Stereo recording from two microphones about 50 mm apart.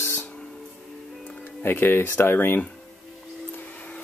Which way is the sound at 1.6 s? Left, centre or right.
Left.